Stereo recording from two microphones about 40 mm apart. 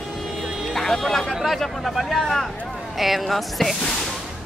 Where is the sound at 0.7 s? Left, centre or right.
Centre.